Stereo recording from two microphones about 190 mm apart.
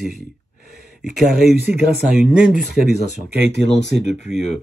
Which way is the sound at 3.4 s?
65° right (ahead or behind).